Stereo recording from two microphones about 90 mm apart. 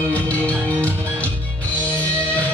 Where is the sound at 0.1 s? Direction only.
15° left (ahead or behind).